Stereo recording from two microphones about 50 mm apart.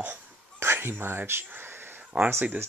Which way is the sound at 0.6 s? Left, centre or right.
Right.